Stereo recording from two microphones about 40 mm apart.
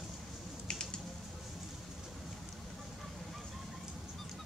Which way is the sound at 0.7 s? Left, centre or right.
Left.